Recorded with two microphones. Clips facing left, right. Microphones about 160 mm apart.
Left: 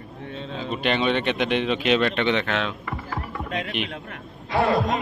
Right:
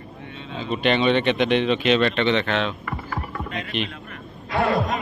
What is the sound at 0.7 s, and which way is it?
Speech, 5° left (ahead or behind).